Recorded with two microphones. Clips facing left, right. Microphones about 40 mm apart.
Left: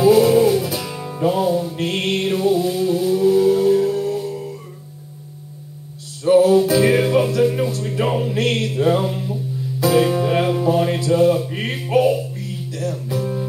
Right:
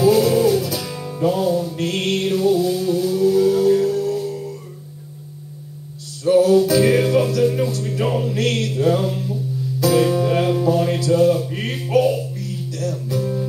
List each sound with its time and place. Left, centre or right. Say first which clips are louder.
0.0 s music: left 2 dB; centre
6.2 s music: left 1 dB; centre